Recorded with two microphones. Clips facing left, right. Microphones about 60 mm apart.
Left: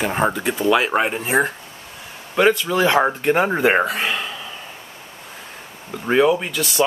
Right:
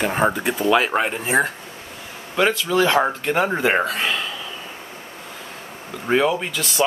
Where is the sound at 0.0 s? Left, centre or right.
Centre.